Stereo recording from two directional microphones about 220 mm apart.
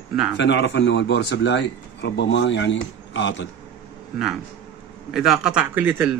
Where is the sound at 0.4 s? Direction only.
55° left (ahead or behind).